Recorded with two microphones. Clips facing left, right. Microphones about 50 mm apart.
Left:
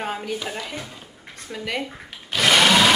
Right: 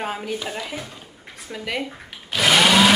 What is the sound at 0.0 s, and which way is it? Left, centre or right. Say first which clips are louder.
Speech: even; centre.